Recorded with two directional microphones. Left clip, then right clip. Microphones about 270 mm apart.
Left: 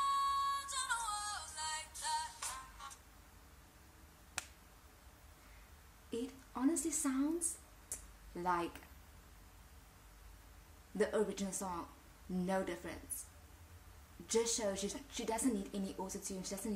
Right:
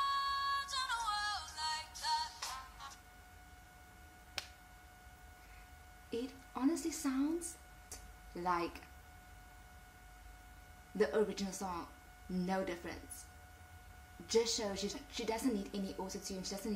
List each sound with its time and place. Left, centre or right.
0.0 s music: centre
6.0 s a sound: centre
8.4 s a woman's voice: centre
11.0 s a woman's voice: centre
14.2 s a woman's voice: centre